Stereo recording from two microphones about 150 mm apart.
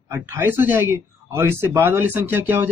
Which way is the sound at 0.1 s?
15° right (ahead or behind).